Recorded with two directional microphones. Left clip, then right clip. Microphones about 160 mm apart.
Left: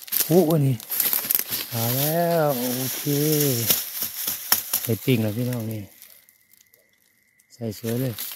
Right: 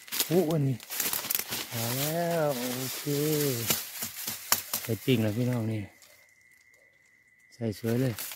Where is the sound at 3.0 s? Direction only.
45° left (ahead or behind).